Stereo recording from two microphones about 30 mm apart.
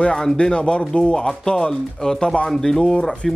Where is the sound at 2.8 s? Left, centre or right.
Left.